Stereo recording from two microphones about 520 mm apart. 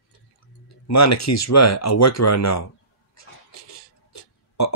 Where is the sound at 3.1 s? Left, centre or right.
Left.